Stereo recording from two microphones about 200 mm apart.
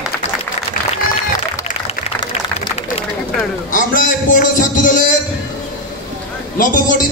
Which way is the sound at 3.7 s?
40° left (ahead or behind).